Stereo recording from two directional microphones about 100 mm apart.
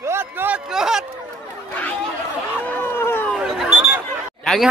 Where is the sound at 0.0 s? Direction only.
25° right (ahead or behind).